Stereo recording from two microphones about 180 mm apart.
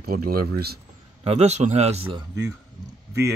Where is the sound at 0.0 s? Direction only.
55° right (ahead or behind).